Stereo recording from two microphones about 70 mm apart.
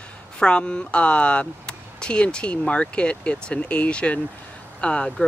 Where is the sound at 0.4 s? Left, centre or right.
Centre.